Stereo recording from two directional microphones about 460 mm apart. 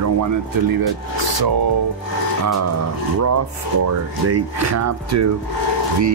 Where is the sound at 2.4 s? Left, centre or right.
Right.